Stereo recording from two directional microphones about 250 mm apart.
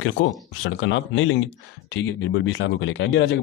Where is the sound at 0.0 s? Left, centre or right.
Left.